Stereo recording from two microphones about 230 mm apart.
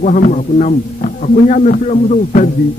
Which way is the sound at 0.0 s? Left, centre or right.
Left.